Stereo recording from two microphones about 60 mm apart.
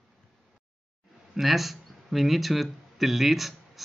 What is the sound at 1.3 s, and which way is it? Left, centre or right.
Speech, centre.